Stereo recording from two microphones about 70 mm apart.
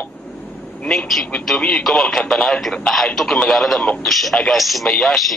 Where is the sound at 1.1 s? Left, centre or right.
Centre.